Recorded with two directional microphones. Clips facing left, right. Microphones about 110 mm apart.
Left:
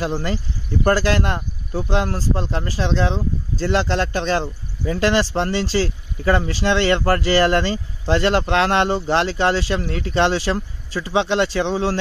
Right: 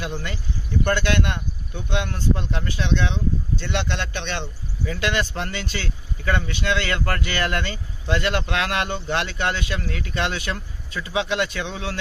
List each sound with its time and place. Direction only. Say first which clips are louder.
0.0 s speech: left 7 dB; 35° left (ahead or behind)